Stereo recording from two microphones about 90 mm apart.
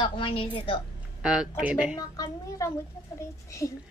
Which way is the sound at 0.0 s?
80° left.